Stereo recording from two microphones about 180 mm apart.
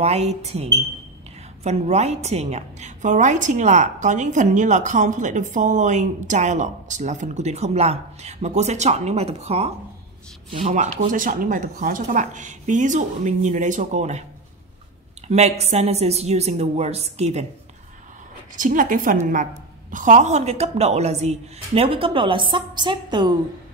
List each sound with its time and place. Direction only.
0.0 s a woman's voice: 35° right (ahead or behind)
15.2 s a woman's voice: 35° right (ahead or behind)
18.6 s a woman's voice: 45° right (ahead or behind); by 23.3 s 25° right (ahead or behind)